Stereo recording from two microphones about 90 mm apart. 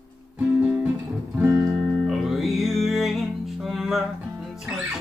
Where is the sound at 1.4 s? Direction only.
30° right (ahead or behind).